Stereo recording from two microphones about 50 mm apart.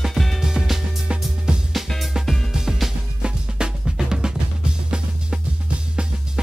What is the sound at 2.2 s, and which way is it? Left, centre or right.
Music, centre.